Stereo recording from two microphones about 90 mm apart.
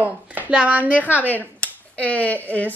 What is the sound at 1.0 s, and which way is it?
Speech, 20° left (ahead or behind).